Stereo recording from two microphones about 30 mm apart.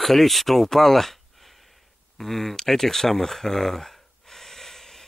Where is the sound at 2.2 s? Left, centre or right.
Centre.